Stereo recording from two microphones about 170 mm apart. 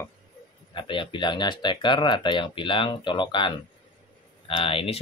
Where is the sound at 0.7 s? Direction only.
30° left (ahead or behind).